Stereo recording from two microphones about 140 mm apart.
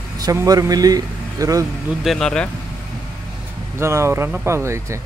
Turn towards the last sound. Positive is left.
turn(degrees=-20)  # may be behind; listen again after turning